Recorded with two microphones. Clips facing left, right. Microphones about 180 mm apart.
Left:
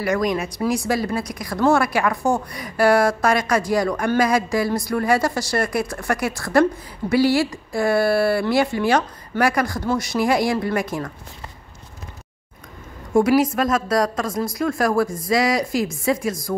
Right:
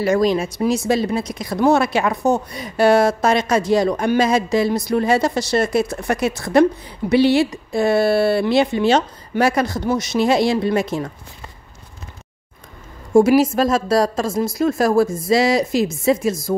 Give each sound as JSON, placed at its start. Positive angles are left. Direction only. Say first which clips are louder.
{"t": 0.0, "sound": "speech", "louder": "right 4 dB", "side_deg": -30}
{"t": 13.1, "sound": "speech", "louder": "right 4 dB", "side_deg": -25}